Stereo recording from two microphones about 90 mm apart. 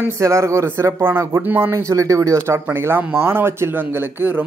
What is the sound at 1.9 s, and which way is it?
Speech, 40° right (ahead or behind).